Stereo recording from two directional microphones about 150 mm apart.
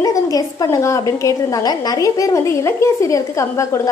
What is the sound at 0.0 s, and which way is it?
A woman's voice, 25° left (ahead or behind).